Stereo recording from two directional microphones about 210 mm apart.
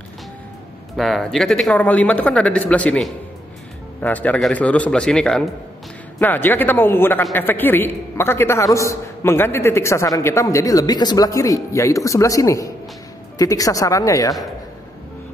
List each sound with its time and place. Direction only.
0.9 s a man's voice: centre (ahead or behind)